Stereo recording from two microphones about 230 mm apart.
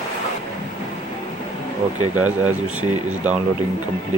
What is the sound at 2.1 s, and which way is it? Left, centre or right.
Speech, right.